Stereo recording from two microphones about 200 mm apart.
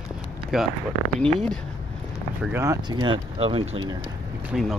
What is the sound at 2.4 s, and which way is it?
Speech, 15° right (ahead or behind).